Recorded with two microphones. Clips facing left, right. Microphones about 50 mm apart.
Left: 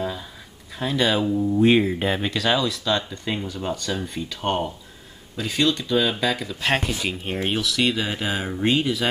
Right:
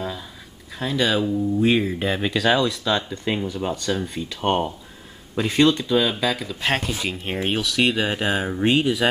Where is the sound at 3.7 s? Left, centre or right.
Centre; by 5.8 s right.